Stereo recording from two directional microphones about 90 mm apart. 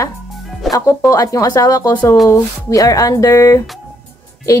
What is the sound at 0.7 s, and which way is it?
A woman's voice, 40° left (ahead or behind).